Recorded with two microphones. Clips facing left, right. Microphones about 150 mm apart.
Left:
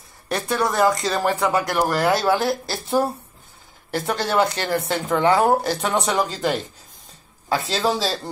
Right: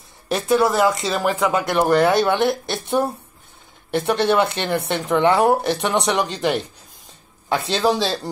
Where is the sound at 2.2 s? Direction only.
Centre (ahead or behind).